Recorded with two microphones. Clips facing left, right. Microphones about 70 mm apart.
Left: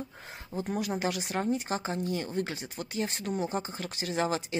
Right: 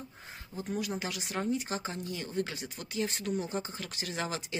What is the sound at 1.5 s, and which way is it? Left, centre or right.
Speech, left.